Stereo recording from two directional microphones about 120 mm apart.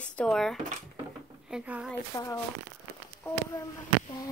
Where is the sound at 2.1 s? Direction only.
20° left (ahead or behind).